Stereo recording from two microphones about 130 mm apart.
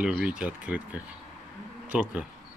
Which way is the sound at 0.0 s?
5° right (ahead or behind).